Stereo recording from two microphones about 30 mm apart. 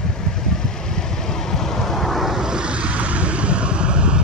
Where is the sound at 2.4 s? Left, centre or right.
Right.